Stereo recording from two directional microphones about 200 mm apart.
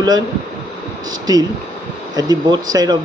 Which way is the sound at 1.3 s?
20° right (ahead or behind).